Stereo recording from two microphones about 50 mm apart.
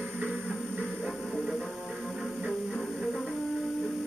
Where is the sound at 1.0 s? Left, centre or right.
Centre.